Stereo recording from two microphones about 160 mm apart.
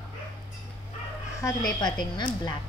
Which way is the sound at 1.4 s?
25° left (ahead or behind).